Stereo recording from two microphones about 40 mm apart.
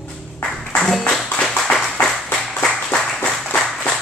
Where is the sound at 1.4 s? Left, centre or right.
Centre.